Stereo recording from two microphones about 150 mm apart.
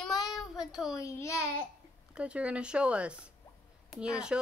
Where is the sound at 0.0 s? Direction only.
Centre (ahead or behind).